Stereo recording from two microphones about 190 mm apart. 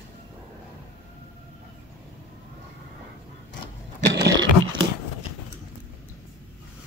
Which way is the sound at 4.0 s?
65° right (ahead or behind).